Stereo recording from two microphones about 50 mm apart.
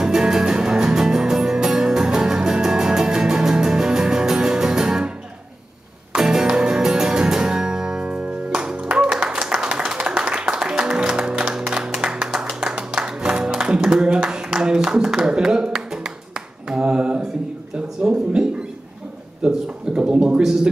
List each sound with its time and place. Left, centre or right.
0.0 s music: centre
6.1 s music: centre
16.6 s finger snapping: centre
17.7 s a sound: centre